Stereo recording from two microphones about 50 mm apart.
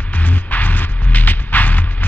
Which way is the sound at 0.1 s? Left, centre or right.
Left.